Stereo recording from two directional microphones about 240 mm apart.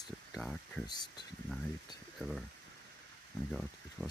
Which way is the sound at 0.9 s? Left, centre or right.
Centre.